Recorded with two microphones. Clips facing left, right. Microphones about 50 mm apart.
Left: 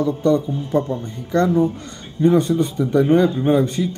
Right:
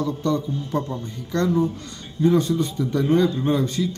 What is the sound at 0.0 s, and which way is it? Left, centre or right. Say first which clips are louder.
A man's voice: left 6 dB; left.